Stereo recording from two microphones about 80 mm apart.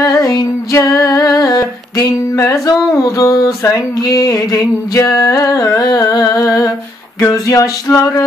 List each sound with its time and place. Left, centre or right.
0.0 s female singing: left
0.7 s music: left
2.7 s a sound: left